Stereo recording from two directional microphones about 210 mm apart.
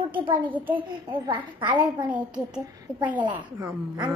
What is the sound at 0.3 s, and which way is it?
A child's voice, 10° right (ahead or behind).